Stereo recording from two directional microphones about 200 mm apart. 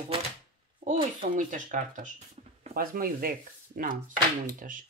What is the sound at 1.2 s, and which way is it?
Speech, 40° right (ahead or behind).